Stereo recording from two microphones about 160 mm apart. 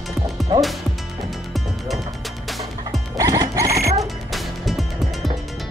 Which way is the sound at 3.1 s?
20° right (ahead or behind).